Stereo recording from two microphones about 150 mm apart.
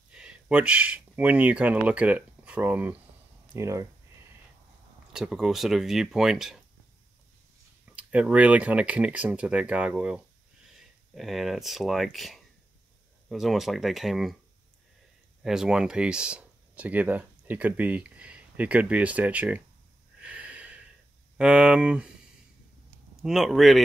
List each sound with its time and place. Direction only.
0.1 s speech: 5° right (ahead or behind)
5.1 s speech: 5° right (ahead or behind)
7.9 s speech: 10° right (ahead or behind)
15.4 s speech: 5° right (ahead or behind)
20.2 s snort: 10° right (ahead or behind)
21.4 s speech: 5° right (ahead or behind)
23.2 s speech: centre (ahead or behind)